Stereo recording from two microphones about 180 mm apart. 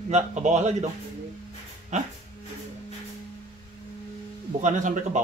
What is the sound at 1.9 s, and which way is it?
Speech, 40° right (ahead or behind).